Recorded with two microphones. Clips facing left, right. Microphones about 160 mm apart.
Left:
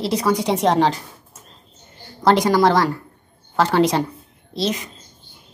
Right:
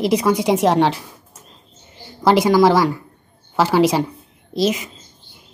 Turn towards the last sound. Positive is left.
turn(degrees=-10)  # may be behind; listen again after turning